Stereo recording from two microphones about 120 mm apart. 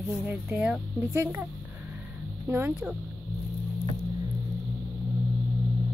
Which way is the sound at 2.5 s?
15° right (ahead or behind).